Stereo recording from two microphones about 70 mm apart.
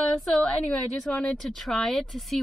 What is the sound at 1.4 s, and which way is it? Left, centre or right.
A woman's voice, centre.